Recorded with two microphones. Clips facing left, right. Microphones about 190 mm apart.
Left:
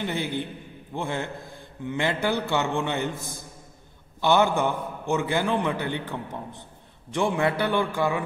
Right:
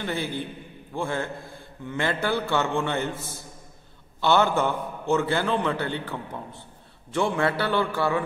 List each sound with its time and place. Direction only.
0.0 s a man's voice: 20° left (ahead or behind)